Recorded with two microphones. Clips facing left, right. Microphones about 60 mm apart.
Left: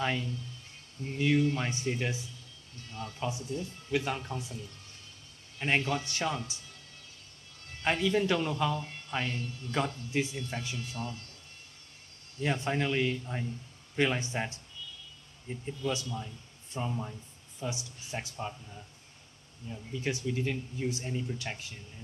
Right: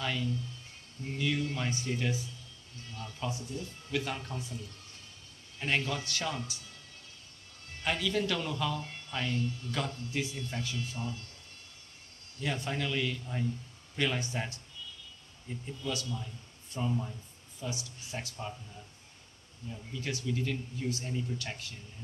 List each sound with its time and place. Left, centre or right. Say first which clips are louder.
0.0 s speech: left 2 dB; left
5.6 s speech: left 3 dB; left
7.8 s speech: left 3 dB; left
12.4 s speech: left 4 dB; left
19.7 s speech: left 4 dB; left